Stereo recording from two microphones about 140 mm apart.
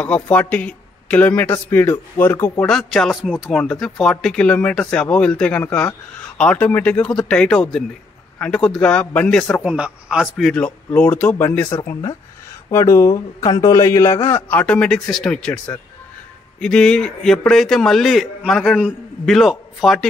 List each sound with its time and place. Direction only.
0.0 s speech: 10° left (ahead or behind)
2.6 s speech: centre (ahead or behind)
9.6 s a man's voice: 10° right (ahead or behind)
10.3 s a man's voice: 5° left (ahead or behind); by 14.4 s 20° left (ahead or behind)
14.5 s a man's voice: 10° left (ahead or behind)